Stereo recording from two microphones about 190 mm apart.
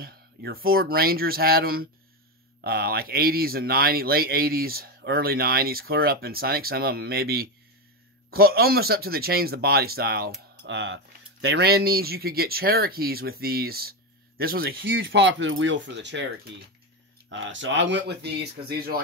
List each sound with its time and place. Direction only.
0.0 s speech: 55° right (ahead or behind)
17.3 s speech: 75° right (ahead or behind); by 18.9 s 55° right (ahead or behind)